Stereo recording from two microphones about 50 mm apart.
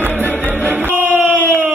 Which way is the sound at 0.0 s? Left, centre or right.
Right.